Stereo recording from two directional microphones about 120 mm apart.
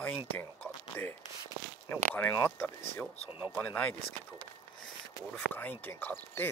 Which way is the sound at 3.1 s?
60° left (ahead or behind).